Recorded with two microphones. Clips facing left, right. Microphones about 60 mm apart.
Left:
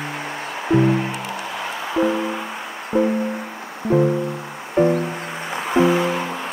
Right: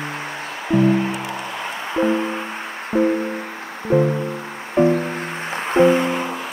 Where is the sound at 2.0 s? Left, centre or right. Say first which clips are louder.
Right 1 dB; centre.